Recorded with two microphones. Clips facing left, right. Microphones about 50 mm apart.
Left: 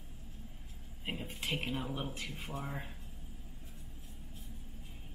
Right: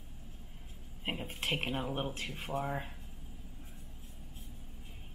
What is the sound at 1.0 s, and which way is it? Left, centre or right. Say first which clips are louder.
Speech: right 3 dB; right.